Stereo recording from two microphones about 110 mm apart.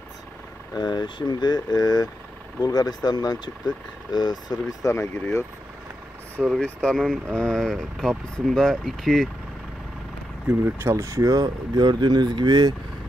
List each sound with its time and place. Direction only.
0.7 s speech: 40° left (ahead or behind)
4.9 s speech: 20° left (ahead or behind)
6.6 s speech: 5° left (ahead or behind)
10.6 s speech: 25° right (ahead or behind); by 12.7 s 40° right (ahead or behind)